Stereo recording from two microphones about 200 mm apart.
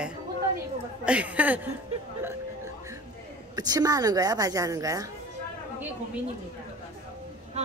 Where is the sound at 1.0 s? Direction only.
5° right (ahead or behind).